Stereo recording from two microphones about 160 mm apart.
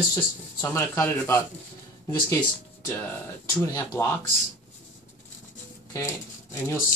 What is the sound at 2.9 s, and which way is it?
Speech, 15° left (ahead or behind).